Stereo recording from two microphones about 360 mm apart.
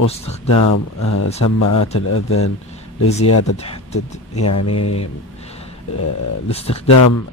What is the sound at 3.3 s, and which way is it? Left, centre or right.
A man's voice, left.